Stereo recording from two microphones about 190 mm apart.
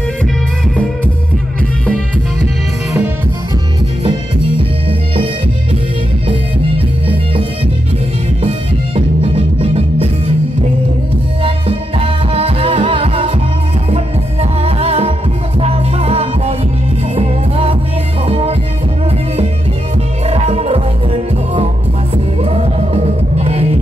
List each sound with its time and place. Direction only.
8.5 s music: 30° right (ahead or behind)
11.4 s music: 30° right (ahead or behind)
20.2 s music: 35° right (ahead or behind)
22.1 s music: 30° right (ahead or behind)